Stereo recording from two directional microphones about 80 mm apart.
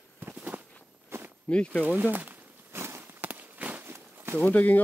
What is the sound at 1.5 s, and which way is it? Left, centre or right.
Speech, centre.